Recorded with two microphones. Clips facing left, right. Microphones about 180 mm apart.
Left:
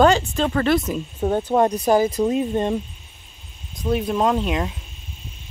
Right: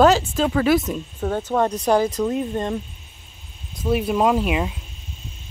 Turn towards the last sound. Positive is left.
turn(degrees=-5)  # may be behind; listen again after turning